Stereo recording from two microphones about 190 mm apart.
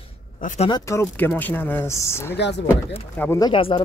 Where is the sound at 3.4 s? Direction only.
25° left (ahead or behind).